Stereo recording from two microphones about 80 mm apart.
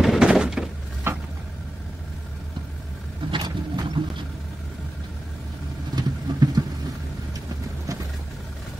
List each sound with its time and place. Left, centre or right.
0.0 s a sound: centre
1.1 s vehicle: right
3.3 s vehicle: right
5.9 s vehicle: right